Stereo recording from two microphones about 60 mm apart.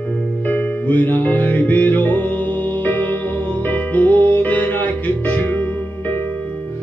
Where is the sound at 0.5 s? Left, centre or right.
Left.